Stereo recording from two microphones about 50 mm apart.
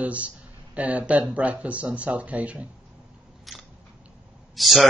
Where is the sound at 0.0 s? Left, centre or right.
Right.